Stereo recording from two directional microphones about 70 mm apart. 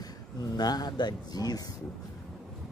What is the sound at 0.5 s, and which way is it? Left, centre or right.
Speech, left.